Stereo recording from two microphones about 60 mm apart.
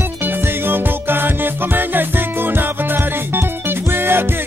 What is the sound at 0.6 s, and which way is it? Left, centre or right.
Music, right.